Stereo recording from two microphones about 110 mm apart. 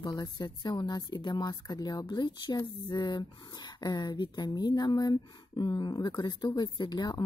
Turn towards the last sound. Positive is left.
turn(degrees=40)  # may be behind; listen again after turning